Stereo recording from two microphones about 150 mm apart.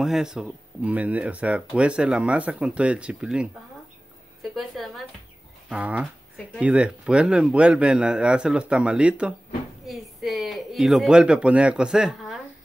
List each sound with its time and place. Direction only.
0.0 s a woman's voice: 5° right (ahead or behind)